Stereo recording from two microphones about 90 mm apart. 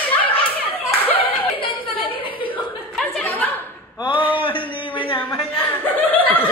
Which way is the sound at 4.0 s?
70° left (ahead or behind).